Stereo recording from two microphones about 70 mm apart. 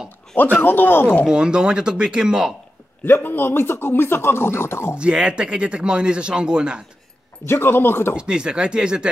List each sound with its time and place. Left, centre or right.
0.4 s speech: left
1.2 s speech: centre
3.1 s speech: left
4.9 s speech: centre
7.4 s speech: left
8.2 s speech: centre